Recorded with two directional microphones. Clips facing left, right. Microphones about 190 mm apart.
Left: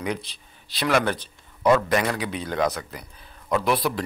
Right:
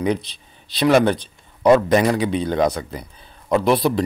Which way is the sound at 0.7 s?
20° right (ahead or behind).